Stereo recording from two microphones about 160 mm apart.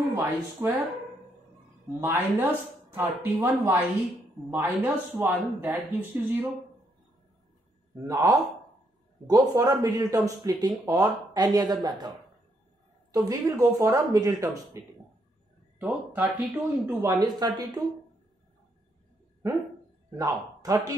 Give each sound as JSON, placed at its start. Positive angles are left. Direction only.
{"t": 0.1, "sound": "speech", "side_deg": -20}
{"t": 2.0, "sound": "speech", "side_deg": -10}
{"t": 7.9, "sound": "speech", "side_deg": -20}
{"t": 13.1, "sound": "speech", "side_deg": -25}
{"t": 15.8, "sound": "speech", "side_deg": -10}
{"t": 16.8, "sound": "speech", "side_deg": -25}
{"t": 20.2, "sound": "speech", "side_deg": -25}